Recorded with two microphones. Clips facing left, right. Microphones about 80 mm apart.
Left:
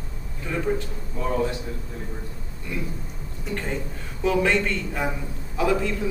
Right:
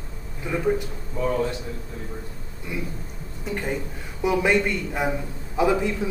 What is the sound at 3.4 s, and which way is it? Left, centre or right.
A man's voice, centre.